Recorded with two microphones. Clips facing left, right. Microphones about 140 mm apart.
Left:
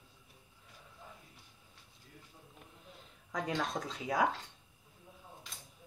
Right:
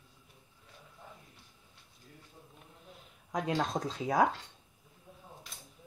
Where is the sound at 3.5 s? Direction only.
35° right (ahead or behind).